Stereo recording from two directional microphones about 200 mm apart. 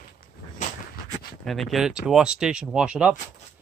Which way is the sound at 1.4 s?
Centre (ahead or behind).